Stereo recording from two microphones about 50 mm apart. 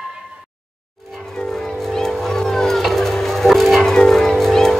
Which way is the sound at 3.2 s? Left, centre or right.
Centre.